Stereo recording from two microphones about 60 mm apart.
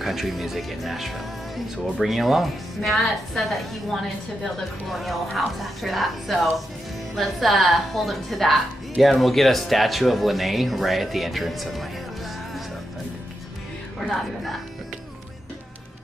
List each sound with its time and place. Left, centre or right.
0.0 s speech: centre
14.1 s speech: centre